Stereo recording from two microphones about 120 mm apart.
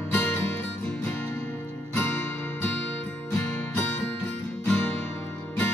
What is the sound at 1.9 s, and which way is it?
Music, 20° left (ahead or behind).